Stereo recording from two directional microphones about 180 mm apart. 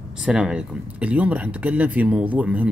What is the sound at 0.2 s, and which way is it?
Speech, 5° right (ahead or behind).